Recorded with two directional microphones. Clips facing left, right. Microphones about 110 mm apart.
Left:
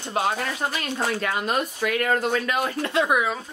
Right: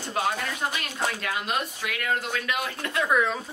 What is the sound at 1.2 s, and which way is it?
Speech, 40° left (ahead or behind).